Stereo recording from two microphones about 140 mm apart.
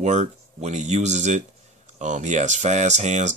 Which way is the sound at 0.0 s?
55° right (ahead or behind).